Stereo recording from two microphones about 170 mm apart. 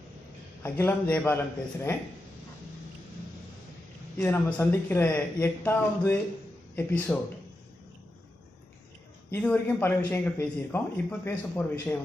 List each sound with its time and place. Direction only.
0.6 s a man's voice: 15° left (ahead or behind)
4.2 s a man's voice: 10° left (ahead or behind)
9.3 s a man's voice: 10° left (ahead or behind)